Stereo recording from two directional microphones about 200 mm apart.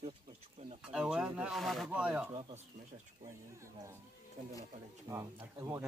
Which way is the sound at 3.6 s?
15° right (ahead or behind).